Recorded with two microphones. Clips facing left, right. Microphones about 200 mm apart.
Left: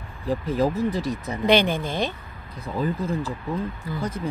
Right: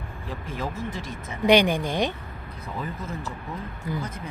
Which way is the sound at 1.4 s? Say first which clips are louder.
Right 1 dB; 15° right (ahead or behind).